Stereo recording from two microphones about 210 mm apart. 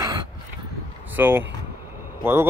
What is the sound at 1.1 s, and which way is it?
A man's voice, 10° right (ahead or behind).